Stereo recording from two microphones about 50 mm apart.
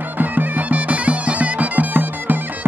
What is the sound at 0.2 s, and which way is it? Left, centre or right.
Bagpipes, right.